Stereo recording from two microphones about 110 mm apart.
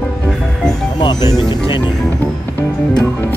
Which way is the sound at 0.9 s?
40° left (ahead or behind).